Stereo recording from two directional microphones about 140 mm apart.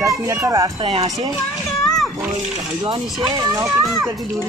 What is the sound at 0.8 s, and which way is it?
Speech, 40° right (ahead or behind).